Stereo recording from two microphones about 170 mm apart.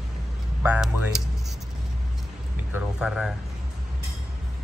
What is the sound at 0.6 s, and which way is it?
Speech, 10° right (ahead or behind).